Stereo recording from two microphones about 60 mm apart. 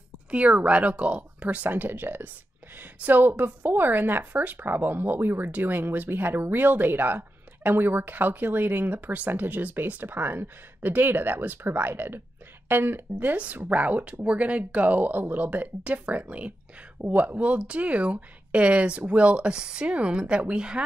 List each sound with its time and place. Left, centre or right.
0.3 s speech: right
13.7 s speech: right